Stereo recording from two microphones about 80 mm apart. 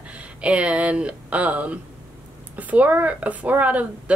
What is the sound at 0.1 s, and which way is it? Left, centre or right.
Speech, centre.